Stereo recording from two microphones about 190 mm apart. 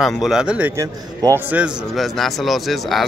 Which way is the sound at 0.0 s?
Centre (ahead or behind).